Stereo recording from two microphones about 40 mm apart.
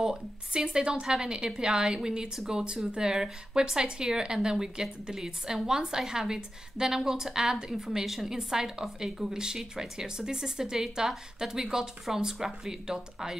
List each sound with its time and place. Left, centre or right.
0.0 s a woman's voice: centre